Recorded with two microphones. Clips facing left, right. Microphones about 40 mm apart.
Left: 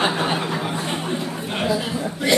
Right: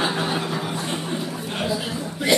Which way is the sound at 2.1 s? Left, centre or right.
Centre.